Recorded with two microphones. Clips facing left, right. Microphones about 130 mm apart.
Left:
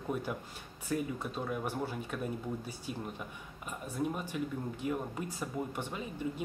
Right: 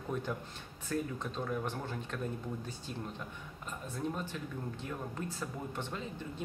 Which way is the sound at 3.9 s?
10° left (ahead or behind).